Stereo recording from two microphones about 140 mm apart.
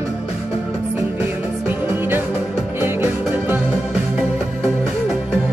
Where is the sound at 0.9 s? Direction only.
15° right (ahead or behind).